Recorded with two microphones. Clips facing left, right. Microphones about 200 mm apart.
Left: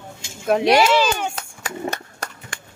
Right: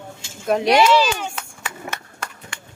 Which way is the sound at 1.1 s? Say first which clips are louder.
Left 3 dB; 35° left (ahead or behind).